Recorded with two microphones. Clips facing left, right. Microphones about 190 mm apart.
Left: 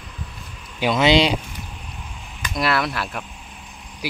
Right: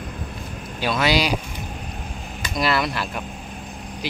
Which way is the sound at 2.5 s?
Centre (ahead or behind).